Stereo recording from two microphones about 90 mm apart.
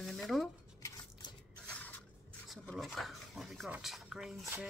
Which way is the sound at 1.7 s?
15° left (ahead or behind).